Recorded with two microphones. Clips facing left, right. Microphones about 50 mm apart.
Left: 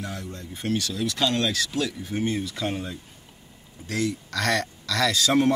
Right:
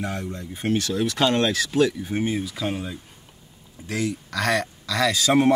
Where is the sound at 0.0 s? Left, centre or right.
Right.